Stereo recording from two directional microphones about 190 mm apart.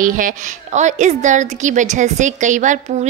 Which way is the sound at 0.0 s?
45° right (ahead or behind).